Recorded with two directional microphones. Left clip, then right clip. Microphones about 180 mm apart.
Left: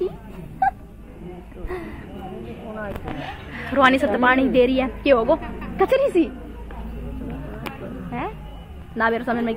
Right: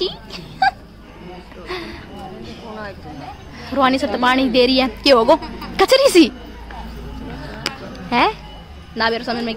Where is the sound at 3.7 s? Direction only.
20° right (ahead or behind); by 6.3 s 70° right (ahead or behind).